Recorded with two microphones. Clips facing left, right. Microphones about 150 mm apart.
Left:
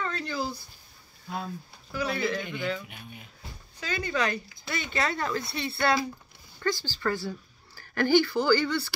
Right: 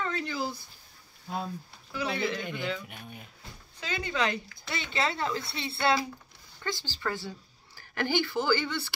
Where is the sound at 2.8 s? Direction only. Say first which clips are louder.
Right 1 dB; 45° right (ahead or behind).